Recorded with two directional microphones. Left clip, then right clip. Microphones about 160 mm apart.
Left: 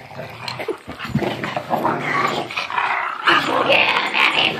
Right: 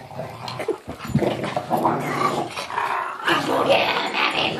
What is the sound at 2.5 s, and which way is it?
Dog, 60° right (ahead or behind).